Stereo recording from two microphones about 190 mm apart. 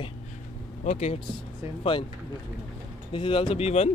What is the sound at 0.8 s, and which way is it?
Speech, 35° left (ahead or behind).